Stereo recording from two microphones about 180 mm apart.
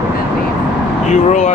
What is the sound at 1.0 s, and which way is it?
Speech, 40° left (ahead or behind).